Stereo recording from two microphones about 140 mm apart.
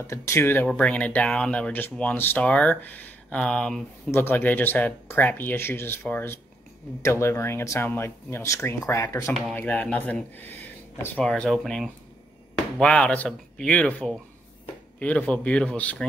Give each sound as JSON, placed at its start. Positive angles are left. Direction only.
{"t": 0.0, "sound": "speech", "side_deg": 20}
{"t": 9.6, "sound": "speech", "side_deg": 10}